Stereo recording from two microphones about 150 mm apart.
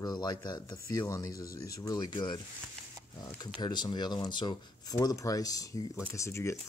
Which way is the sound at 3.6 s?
30° left (ahead or behind).